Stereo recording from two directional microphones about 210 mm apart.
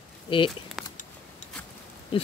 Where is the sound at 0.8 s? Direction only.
Centre (ahead or behind).